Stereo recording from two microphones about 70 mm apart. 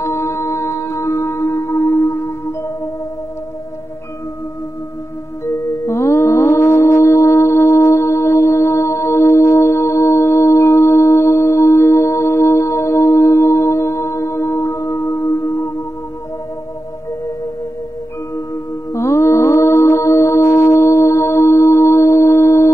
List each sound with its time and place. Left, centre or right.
0.0 s music: left
5.4 s music: left
18.9 s music: left